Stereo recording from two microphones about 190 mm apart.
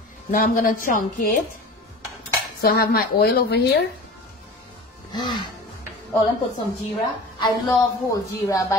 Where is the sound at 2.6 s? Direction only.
55° left (ahead or behind).